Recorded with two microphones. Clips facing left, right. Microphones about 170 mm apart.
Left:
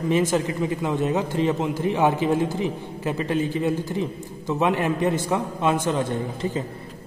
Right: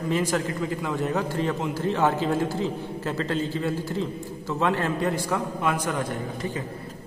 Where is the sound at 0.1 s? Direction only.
20° left (ahead or behind).